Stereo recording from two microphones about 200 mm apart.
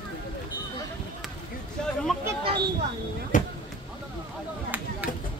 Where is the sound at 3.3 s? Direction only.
40° left (ahead or behind).